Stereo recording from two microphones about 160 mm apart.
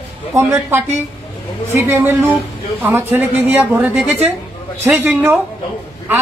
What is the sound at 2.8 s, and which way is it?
Speech, 10° right (ahead or behind).